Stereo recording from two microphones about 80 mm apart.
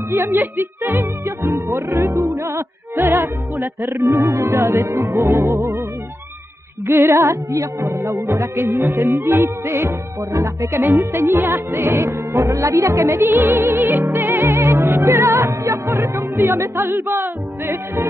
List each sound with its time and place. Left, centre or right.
0.1 s music: right
6.9 s music: right